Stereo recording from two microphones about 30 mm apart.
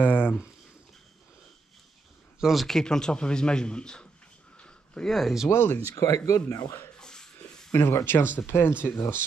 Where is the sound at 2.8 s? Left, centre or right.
Left.